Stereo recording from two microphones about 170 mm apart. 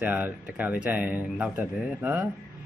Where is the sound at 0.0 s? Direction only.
10° right (ahead or behind).